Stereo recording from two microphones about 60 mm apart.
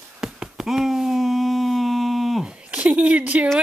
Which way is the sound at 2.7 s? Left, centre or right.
Right.